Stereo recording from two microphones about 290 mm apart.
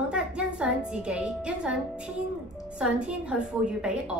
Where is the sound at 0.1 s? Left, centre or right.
Centre.